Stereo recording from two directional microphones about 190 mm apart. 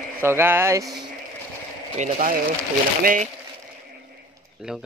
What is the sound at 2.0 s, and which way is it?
Speech, 45° right (ahead or behind).